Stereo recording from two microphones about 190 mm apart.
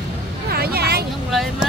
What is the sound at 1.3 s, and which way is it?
Speech, centre (ahead or behind).